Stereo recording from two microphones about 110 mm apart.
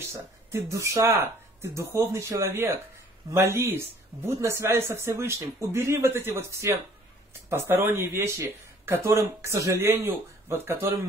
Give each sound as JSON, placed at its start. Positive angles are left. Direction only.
{"t": 0.0, "sound": "speech", "side_deg": -25}